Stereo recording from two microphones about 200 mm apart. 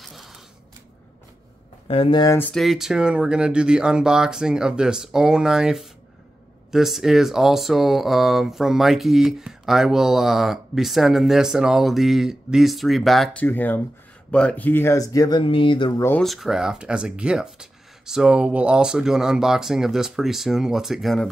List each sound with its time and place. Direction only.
0.0 s a sound: centre (ahead or behind)
1.9 s speech: 25° left (ahead or behind)
16.0 s speech: 5° left (ahead or behind)